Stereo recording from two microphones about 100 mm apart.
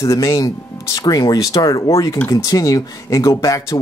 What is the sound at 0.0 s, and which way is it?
Speech, 30° left (ahead or behind).